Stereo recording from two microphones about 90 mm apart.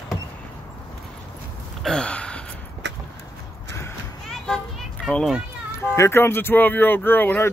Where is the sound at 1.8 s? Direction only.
10° left (ahead or behind).